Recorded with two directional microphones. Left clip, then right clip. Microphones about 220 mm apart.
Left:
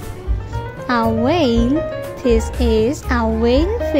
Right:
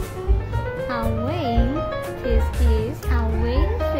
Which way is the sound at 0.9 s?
35° left (ahead or behind).